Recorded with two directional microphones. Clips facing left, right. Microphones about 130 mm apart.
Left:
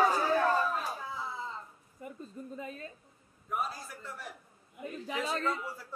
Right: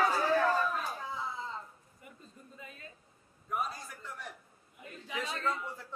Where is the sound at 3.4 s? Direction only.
Centre (ahead or behind).